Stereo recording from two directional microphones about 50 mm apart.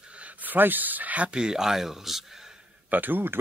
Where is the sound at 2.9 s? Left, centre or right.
Right.